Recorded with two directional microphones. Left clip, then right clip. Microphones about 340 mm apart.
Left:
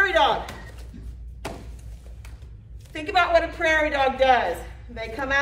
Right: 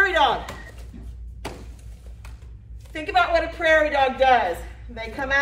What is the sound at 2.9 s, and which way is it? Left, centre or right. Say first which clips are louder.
A woman's voice: even; centre.